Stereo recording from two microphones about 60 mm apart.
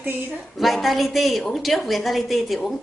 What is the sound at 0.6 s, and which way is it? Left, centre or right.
A woman's voice, centre.